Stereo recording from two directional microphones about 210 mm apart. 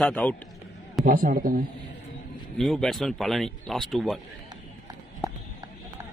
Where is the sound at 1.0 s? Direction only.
45° right (ahead or behind).